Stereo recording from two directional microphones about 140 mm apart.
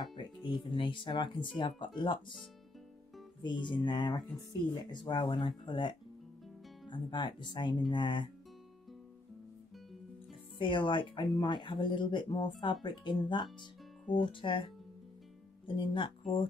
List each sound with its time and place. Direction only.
0.1 s speech: 35° left (ahead or behind)
3.4 s speech: 35° left (ahead or behind)
4.2 s speech: centre (ahead or behind)
5.0 s speech: 35° left (ahead or behind)
10.6 s speech: 35° left (ahead or behind)